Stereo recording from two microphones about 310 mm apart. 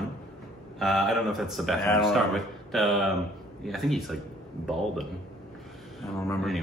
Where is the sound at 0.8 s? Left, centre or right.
Centre.